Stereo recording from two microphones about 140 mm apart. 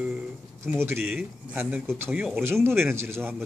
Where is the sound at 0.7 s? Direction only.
15° right (ahead or behind).